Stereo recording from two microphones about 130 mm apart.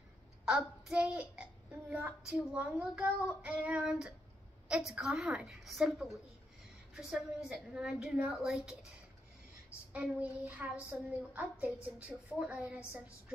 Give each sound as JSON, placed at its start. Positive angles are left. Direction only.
{"t": 0.5, "sound": "a child's voice", "side_deg": -5}
{"t": 9.9, "sound": "a child's voice", "side_deg": -10}